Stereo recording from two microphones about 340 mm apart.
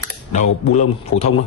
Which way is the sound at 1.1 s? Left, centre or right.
Left.